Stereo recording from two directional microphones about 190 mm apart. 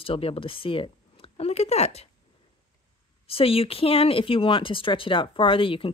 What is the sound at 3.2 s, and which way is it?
Speech, 30° left (ahead or behind).